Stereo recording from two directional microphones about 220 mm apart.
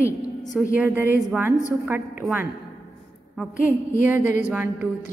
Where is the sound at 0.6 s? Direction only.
10° right (ahead or behind).